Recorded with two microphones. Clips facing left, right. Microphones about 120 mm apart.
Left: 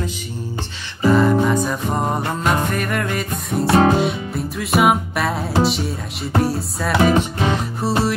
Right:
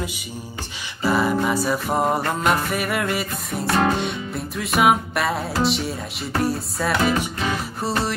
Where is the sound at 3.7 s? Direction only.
25° left (ahead or behind).